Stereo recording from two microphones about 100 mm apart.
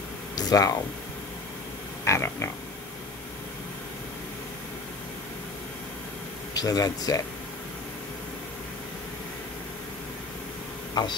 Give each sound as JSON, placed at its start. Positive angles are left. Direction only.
{"t": 0.4, "sound": "speech", "side_deg": 40}
{"t": 2.0, "sound": "a sound", "side_deg": 25}
{"t": 6.5, "sound": "speech", "side_deg": 40}